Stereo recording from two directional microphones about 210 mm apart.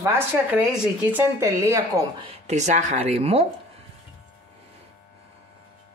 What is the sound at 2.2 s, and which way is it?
Speech, 30° right (ahead or behind).